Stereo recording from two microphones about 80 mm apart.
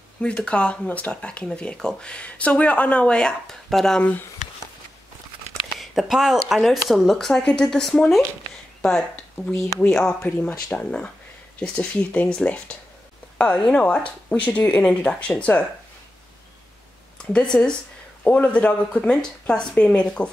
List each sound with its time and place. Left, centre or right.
0.2 s speech: centre
4.0 s speech: left
5.5 s speech: centre
17.2 s speech: centre
19.7 s speech: left